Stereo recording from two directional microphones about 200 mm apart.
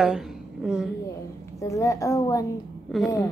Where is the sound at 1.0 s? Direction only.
15° left (ahead or behind).